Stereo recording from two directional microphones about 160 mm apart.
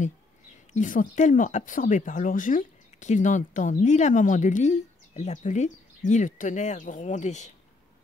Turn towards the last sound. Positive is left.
turn(degrees=45)  # may be behind; listen again after turning